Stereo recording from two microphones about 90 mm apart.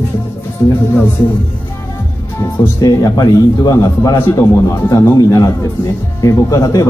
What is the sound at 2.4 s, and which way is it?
A man's voice, 35° left (ahead or behind).